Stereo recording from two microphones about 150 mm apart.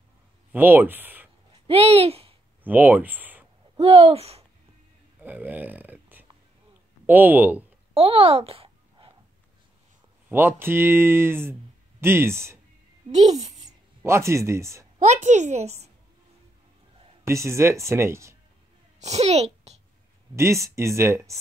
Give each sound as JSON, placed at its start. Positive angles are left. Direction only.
{"t": 0.5, "sound": "speech", "side_deg": -10}
{"t": 1.7, "sound": "speech", "side_deg": -40}
{"t": 2.6, "sound": "speech", "side_deg": -10}
{"t": 3.8, "sound": "speech", "side_deg": -40}
{"t": 5.2, "sound": "speech", "side_deg": -10}
{"t": 7.9, "sound": "a sound", "side_deg": -40}
{"t": 10.3, "sound": "speech", "side_deg": -15}
{"t": 13.1, "sound": "a woman's voice", "side_deg": -45}
{"t": 13.7, "sound": "speech", "side_deg": -20}
{"t": 15.0, "sound": "a woman's voice", "side_deg": -55}
{"t": 17.3, "sound": "speech", "side_deg": -20}
{"t": 18.9, "sound": "a child's voice", "side_deg": -45}
{"t": 20.3, "sound": "speech", "side_deg": -20}